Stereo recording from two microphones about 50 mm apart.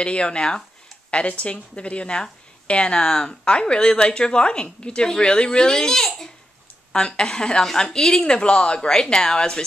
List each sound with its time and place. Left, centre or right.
0.0 s a woman's voice: left